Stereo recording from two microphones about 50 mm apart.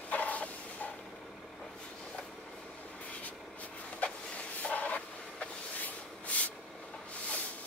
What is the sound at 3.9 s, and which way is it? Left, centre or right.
Vehicle, left.